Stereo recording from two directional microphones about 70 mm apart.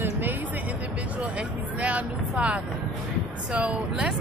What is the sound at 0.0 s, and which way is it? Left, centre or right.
Music, right.